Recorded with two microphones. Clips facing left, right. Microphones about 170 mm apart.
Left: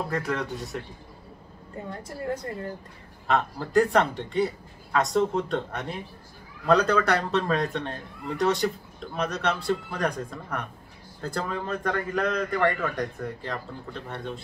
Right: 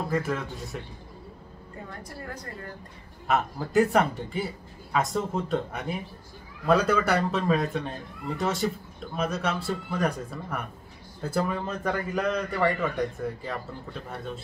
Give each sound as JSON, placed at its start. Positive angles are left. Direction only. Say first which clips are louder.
{"t": 0.1, "sound": "speech", "louder": "even", "side_deg": -5}
{"t": 1.9, "sound": "a woman's voice", "louder": "left 9 dB", "side_deg": 25}
{"t": 3.3, "sound": "a man's voice", "louder": "left 1 dB", "side_deg": -5}